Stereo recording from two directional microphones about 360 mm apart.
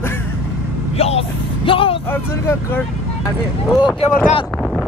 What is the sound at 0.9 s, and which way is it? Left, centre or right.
Vehicle, centre.